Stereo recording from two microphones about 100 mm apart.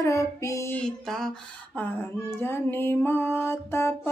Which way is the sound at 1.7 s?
15° left (ahead or behind).